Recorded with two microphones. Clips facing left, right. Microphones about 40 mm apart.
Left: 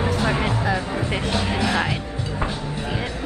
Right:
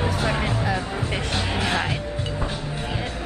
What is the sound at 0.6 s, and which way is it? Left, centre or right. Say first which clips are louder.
Music: left 2 dB; centre.